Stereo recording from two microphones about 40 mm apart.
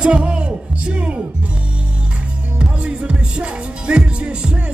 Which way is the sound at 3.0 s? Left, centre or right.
Right.